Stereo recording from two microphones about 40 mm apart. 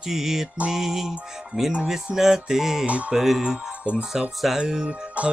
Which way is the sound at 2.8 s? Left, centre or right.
Right.